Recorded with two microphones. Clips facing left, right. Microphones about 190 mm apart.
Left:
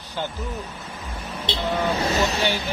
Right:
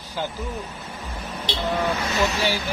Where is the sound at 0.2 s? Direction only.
5° right (ahead or behind).